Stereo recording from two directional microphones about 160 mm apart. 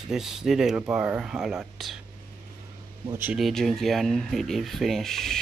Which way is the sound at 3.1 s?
10° right (ahead or behind).